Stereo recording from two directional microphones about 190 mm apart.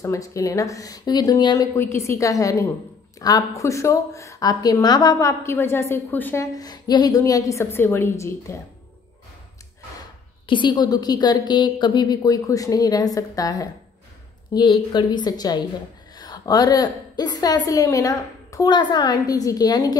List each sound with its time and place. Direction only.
0.0 s a woman's voice: 15° left (ahead or behind)
10.4 s a woman's voice: 25° left (ahead or behind)